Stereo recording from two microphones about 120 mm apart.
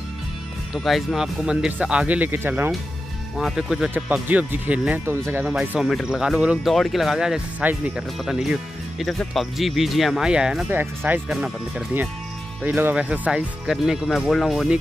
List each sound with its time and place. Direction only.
0.7 s speech: centre (ahead or behind); by 2.7 s 15° right (ahead or behind)
3.3 s speech: 5° right (ahead or behind)
10.7 s speech: 20° right (ahead or behind)
12.6 s speech: 15° right (ahead or behind)